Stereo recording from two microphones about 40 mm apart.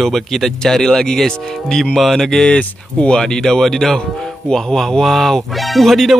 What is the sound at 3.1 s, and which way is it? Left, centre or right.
Speech, centre.